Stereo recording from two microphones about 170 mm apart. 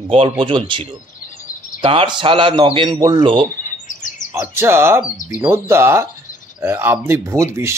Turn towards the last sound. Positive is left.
turn(degrees=-15)  # may be behind; listen again after turning